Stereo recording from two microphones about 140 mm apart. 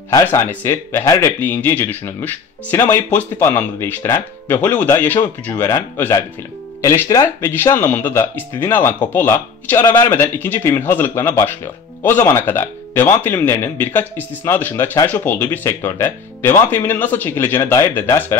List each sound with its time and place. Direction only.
0.1 s speech: 20° left (ahead or behind)
6.8 s speech: 20° left (ahead or behind)